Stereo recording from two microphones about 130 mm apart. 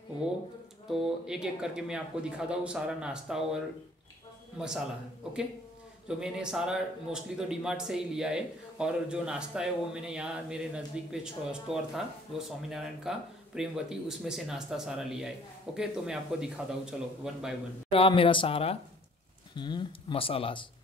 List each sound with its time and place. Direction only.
0.8 s a man's voice: centre (ahead or behind)
6.0 s a man's voice: 5° right (ahead or behind)
17.8 s speech: 45° left (ahead or behind)
19.5 s speech: 35° left (ahead or behind)